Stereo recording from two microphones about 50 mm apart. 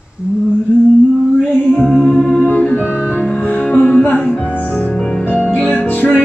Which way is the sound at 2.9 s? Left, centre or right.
Left.